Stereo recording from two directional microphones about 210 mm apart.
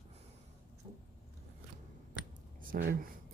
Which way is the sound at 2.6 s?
45° right (ahead or behind).